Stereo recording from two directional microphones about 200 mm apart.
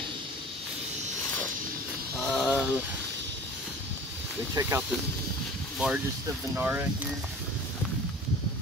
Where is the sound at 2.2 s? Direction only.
5° left (ahead or behind).